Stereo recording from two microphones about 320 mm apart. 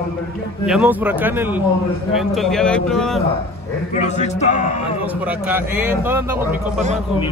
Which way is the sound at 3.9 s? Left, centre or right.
Left.